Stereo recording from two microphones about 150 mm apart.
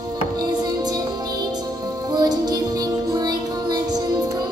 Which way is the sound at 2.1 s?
25° right (ahead or behind).